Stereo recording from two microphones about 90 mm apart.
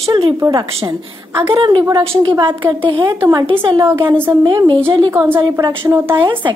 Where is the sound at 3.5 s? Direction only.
55° right (ahead or behind).